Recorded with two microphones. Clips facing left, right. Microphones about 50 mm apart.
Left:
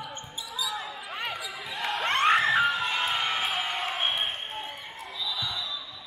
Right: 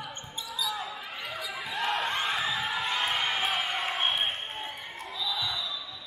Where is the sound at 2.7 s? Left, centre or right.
Centre.